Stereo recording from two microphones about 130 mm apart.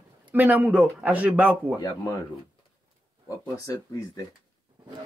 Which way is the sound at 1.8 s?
30° left (ahead or behind).